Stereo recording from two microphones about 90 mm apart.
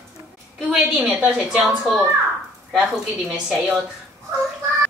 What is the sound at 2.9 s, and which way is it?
Speech, 5° right (ahead or behind).